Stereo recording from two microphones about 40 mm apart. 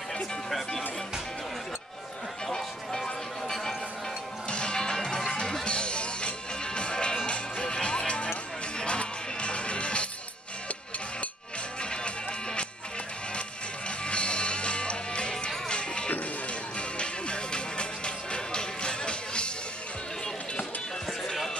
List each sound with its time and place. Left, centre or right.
2.4 s music: centre
4.5 s music: left
11.8 s music: left
13.8 s music: left